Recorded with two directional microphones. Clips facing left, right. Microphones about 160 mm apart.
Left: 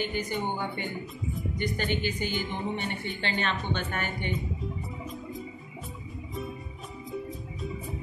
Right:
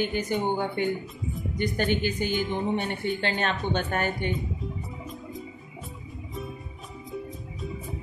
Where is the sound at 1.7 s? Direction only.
50° right (ahead or behind).